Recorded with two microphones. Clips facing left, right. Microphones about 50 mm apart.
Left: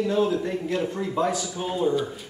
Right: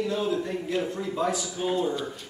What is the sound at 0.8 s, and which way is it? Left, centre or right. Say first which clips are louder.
Speech: left 3 dB; centre.